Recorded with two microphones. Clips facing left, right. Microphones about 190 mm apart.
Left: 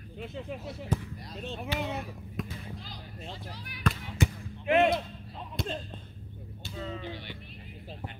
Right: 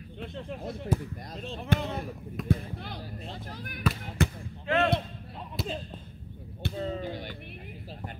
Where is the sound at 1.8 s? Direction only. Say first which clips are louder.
Right 1 dB; 5° left (ahead or behind).